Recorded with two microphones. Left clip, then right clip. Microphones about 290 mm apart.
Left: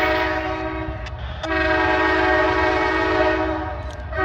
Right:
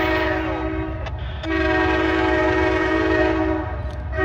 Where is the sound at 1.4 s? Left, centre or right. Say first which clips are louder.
Left 1 dB; centre.